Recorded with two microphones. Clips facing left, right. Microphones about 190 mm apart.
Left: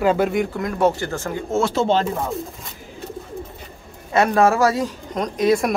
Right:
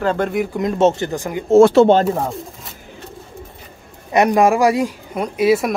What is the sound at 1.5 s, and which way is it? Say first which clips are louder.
Speech: right 10 dB; 55° right (ahead or behind).